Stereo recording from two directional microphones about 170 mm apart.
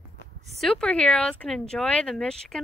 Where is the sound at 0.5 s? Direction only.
Centre (ahead or behind).